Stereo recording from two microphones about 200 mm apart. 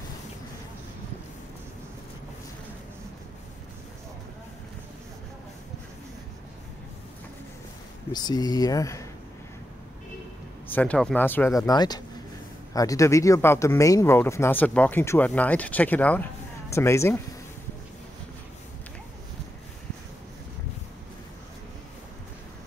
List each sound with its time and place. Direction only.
8.1 s speech: 20° left (ahead or behind)
10.7 s speech: 5° left (ahead or behind)